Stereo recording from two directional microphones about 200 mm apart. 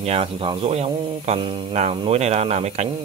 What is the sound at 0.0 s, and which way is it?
Speech, 30° right (ahead or behind).